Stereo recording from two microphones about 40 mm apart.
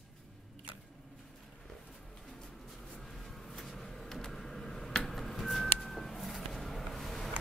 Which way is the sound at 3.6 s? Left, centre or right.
Centre.